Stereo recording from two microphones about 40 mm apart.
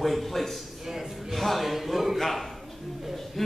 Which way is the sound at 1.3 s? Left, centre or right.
Centre.